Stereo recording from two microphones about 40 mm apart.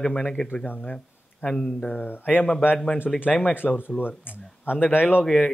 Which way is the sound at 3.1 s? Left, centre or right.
Centre.